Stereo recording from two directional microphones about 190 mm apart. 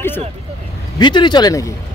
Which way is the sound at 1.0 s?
25° left (ahead or behind).